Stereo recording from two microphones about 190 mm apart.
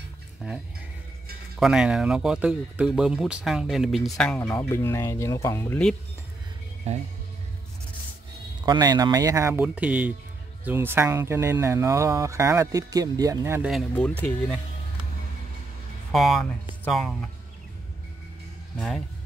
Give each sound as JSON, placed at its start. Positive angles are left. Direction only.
{"t": 0.4, "sound": "speech", "side_deg": -5}
{"t": 1.6, "sound": "speech", "side_deg": -5}
{"t": 6.8, "sound": "music", "side_deg": -35}
{"t": 8.6, "sound": "speech", "side_deg": -20}
{"t": 13.9, "sound": "speech", "side_deg": 10}
{"t": 16.1, "sound": "speech", "side_deg": 0}